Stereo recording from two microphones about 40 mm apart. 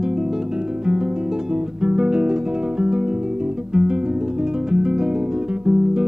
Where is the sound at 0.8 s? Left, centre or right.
Centre.